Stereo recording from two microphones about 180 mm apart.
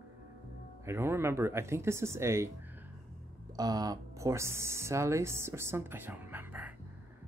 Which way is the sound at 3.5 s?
20° right (ahead or behind).